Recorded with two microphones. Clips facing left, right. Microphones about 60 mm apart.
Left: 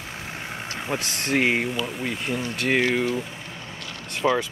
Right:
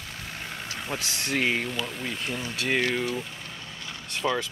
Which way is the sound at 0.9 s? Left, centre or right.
Left.